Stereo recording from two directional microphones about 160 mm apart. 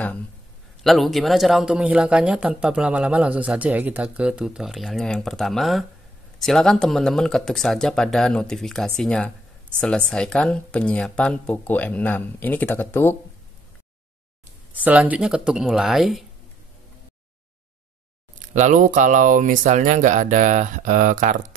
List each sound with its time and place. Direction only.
0.8 s speech: centre (ahead or behind)
14.7 s speech: 10° right (ahead or behind)
18.5 s speech: 50° right (ahead or behind)